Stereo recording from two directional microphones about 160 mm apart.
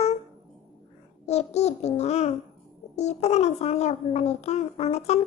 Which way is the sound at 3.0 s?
45° left (ahead or behind).